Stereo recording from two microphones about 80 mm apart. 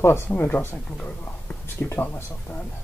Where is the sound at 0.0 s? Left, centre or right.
Left.